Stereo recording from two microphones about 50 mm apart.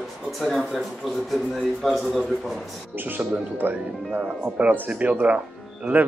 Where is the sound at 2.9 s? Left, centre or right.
Right.